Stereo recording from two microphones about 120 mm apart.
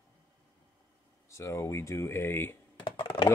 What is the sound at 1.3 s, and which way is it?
Speech, 25° left (ahead or behind).